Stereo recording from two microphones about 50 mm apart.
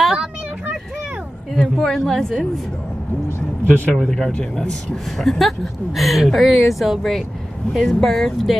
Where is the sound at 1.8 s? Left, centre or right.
Centre.